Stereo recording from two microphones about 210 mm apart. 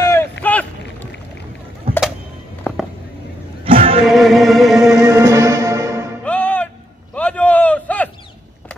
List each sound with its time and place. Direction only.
0.0 s boat: 10° left (ahead or behind)
2.7 s music: 5° left (ahead or behind)
3.6 s music: 25° right (ahead or behind)
4.0 s music: centre (ahead or behind)
5.0 s music: 15° right (ahead or behind)
6.2 s music: 5° left (ahead or behind)
7.2 s a sound: 5° left (ahead or behind)